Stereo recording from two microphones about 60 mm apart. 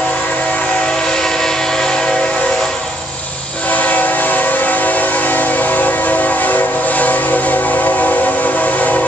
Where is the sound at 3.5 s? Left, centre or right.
Left.